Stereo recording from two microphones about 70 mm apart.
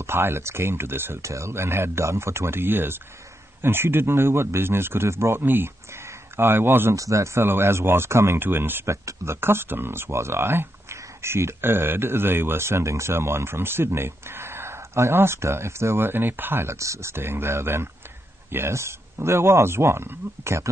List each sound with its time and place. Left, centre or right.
0.0 s speech: right
7.0 s speech: right
8.8 s speech: right